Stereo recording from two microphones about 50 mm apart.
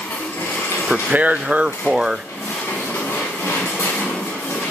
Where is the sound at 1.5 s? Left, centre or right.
Right.